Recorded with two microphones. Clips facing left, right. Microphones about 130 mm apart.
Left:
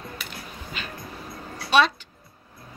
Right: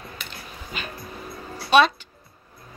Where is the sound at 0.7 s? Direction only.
15° right (ahead or behind).